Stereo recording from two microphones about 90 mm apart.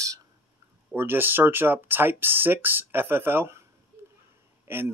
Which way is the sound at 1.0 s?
25° right (ahead or behind).